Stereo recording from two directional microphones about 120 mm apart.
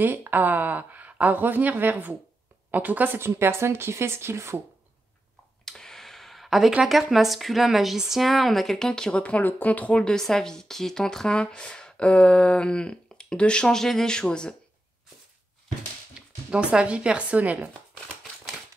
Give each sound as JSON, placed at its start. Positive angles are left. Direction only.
{"t": 0.0, "sound": "speech", "side_deg": -15}
{"t": 5.7, "sound": "speech", "side_deg": 5}
{"t": 16.2, "sound": "speech", "side_deg": -10}